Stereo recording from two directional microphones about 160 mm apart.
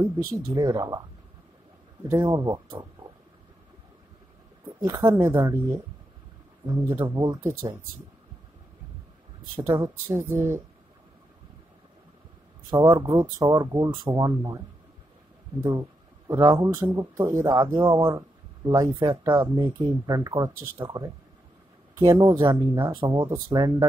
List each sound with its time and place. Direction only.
0.5 s speech: 25° right (ahead or behind)
2.2 s speech: 25° right (ahead or behind)
4.7 s speech: 20° right (ahead or behind)
9.6 s speech: 20° right (ahead or behind)
12.6 s speech: 20° right (ahead or behind)
15.6 s speech: 20° right (ahead or behind)